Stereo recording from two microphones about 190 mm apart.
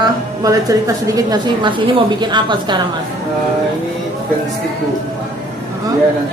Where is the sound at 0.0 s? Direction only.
20° right (ahead or behind).